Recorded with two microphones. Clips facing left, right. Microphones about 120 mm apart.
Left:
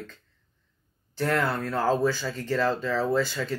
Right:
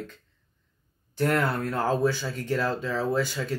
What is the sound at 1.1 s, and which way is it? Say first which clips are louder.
Speech: right 1 dB; 15° right (ahead or behind).